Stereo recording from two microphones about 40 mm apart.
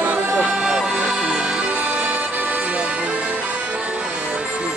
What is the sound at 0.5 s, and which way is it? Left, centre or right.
Music, right.